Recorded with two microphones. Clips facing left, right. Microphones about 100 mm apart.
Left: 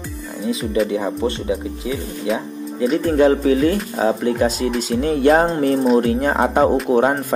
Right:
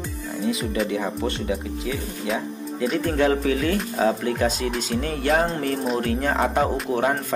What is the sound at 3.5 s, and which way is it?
Speech, 10° left (ahead or behind).